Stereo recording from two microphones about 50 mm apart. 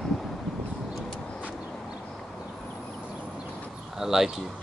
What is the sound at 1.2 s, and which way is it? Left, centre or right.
Vehicle, left.